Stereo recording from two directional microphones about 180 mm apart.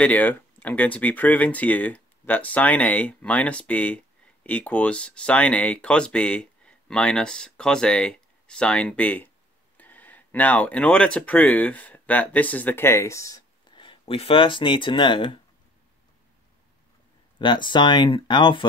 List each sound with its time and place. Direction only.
0.0 s speech: 10° left (ahead or behind); by 15.3 s 30° left (ahead or behind)
17.4 s speech: 25° left (ahead or behind)